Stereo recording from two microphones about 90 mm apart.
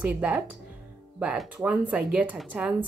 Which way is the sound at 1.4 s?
10° right (ahead or behind).